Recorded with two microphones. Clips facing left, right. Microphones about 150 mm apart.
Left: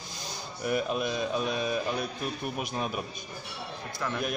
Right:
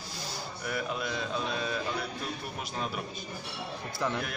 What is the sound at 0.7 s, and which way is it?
Speech, 20° left (ahead or behind).